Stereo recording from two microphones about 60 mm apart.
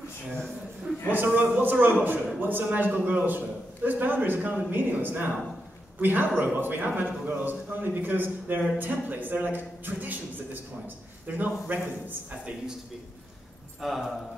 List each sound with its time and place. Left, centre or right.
1.1 s a man's voice: right
13.7 s a man's voice: centre